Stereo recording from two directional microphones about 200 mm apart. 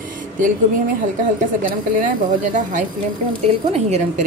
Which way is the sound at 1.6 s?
40° right (ahead or behind).